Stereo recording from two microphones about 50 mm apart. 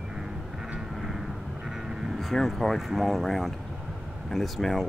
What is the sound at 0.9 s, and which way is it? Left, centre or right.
Vehicle, centre.